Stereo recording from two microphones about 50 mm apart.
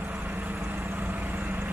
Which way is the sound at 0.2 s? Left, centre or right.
Right.